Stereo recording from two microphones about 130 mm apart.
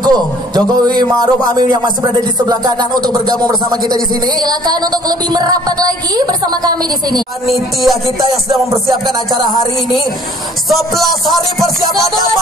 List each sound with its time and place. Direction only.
0.0 s a man's voice: 30° right (ahead or behind)
7.4 s music: centre (ahead or behind)
9.0 s speech: 30° right (ahead or behind)
10.7 s music: centre (ahead or behind)